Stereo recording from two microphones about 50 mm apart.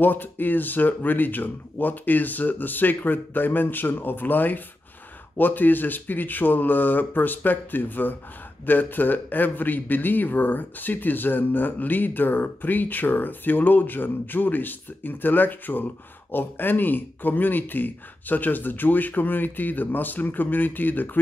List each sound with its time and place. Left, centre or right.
0.0 s speech: left